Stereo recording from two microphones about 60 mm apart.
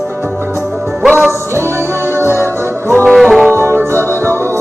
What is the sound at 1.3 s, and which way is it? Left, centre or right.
Music, right.